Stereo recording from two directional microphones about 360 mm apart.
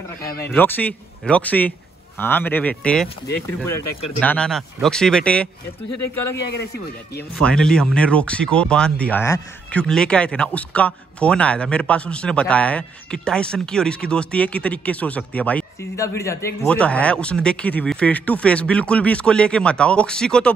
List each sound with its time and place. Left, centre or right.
0.2 s speech: centre
5.9 s speech: left
6.3 s a man's voice: left
7.4 s speech: centre